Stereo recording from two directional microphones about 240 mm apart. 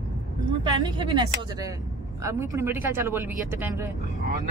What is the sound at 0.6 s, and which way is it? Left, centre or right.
Speech, centre.